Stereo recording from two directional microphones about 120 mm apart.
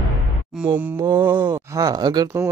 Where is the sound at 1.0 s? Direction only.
35° right (ahead or behind).